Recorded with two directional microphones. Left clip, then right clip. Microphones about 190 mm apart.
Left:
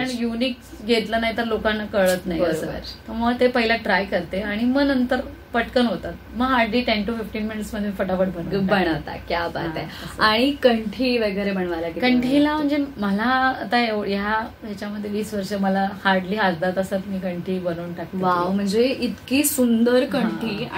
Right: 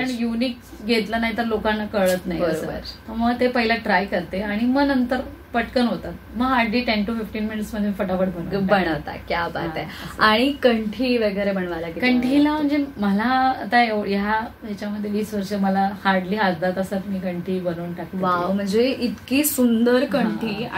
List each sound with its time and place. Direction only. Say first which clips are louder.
0.0 s a sound: even; 20° left (ahead or behind)
3.2 s a woman's voice: left 1 dB; 20° left (ahead or behind)
8.5 s a woman's voice: right 2 dB; 10° right (ahead or behind)
12.0 s a sound: even; 20° left (ahead or behind)
15.1 s a woman's voice: even; 20° left (ahead or behind)
18.2 s a woman's voice: even; 5° right (ahead or behind)